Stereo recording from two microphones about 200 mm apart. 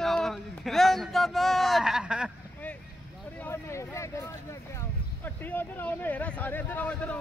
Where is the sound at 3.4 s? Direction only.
10° left (ahead or behind).